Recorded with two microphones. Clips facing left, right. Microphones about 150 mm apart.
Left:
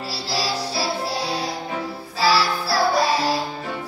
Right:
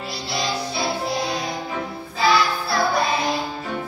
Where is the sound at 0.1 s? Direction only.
35° left (ahead or behind).